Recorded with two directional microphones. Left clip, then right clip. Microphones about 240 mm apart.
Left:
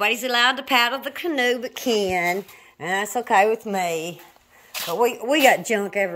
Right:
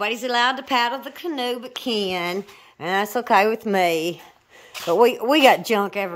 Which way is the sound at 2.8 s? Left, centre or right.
Centre.